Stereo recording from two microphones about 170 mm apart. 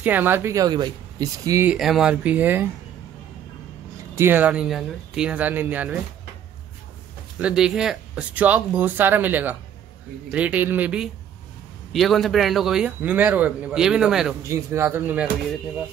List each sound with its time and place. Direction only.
0.0 s speech: 10° right (ahead or behind)
1.7 s speech: centre (ahead or behind)
4.1 s speech: 15° right (ahead or behind)
7.3 s a man's voice: 5° right (ahead or behind)
14.7 s speech: 15° right (ahead or behind)